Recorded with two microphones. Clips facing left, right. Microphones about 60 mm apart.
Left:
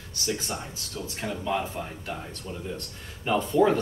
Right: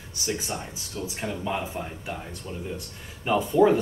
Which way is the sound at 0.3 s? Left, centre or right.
Centre.